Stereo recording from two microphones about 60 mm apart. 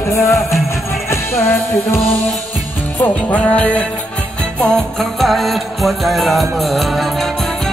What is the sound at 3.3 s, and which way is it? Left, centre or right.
Music, left.